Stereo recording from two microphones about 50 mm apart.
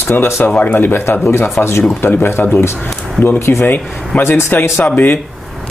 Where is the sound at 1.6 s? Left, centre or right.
Left.